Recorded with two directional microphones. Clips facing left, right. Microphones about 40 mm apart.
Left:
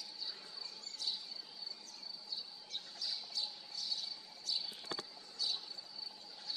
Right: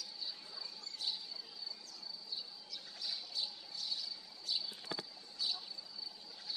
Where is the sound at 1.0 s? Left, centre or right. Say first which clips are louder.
Right 1 dB; right.